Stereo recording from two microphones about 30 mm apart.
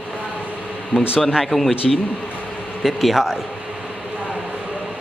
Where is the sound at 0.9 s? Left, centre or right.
Left.